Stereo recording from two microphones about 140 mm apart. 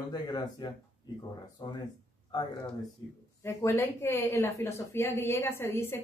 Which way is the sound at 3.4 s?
20° left (ahead or behind).